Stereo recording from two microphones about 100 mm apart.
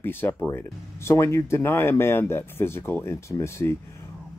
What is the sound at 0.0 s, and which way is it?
Speech, 20° left (ahead or behind).